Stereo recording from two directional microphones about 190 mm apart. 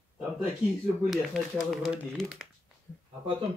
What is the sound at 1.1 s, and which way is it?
Speech, centre (ahead or behind).